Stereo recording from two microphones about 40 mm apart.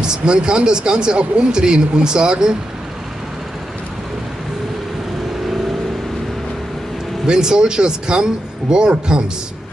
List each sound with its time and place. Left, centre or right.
0.0 s speech: right
7.2 s speech: centre